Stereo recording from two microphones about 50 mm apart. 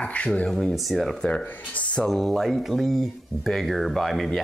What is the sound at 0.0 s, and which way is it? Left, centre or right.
Rub, left.